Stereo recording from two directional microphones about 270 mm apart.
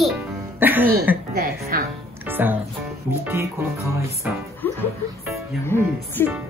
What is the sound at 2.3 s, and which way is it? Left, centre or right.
Speech, centre.